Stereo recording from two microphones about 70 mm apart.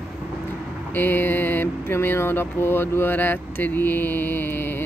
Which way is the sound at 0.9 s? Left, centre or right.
Left.